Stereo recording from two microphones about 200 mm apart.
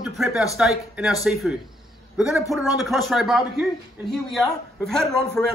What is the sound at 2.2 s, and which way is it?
A man's voice, 5° right (ahead or behind).